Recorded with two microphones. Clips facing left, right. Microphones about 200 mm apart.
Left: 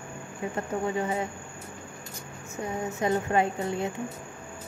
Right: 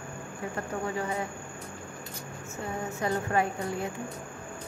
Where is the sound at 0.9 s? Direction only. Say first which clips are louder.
Left 3 dB; 25° left (ahead or behind).